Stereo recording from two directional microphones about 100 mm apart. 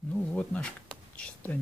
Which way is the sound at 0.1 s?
10° left (ahead or behind).